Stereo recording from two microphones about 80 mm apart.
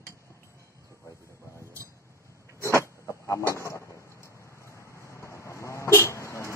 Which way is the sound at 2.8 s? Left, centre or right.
Left.